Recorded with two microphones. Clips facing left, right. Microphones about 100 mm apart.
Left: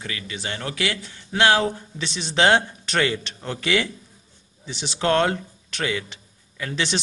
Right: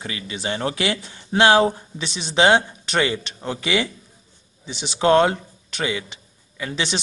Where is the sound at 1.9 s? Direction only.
10° right (ahead or behind).